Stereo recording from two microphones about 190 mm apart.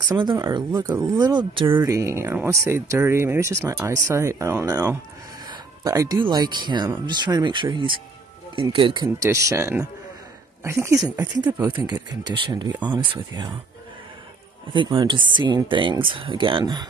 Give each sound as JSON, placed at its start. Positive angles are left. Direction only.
{"t": 0.1, "sound": "speech", "side_deg": -20}
{"t": 14.7, "sound": "speech", "side_deg": -25}